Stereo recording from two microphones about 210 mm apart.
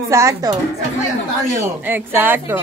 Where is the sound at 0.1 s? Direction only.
15° right (ahead or behind).